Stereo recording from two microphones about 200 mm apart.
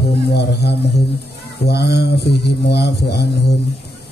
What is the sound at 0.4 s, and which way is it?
Mantra, 55° left (ahead or behind).